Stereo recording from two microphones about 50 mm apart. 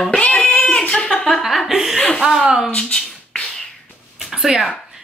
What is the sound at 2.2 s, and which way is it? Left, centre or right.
Speech, centre.